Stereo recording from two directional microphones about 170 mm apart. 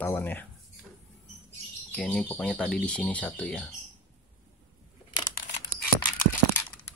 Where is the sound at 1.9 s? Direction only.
10° left (ahead or behind).